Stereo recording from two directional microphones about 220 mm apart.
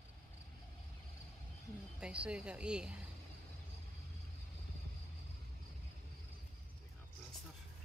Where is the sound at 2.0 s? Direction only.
5° right (ahead or behind).